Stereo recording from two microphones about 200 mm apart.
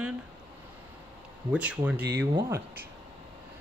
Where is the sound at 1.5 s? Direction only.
5° right (ahead or behind).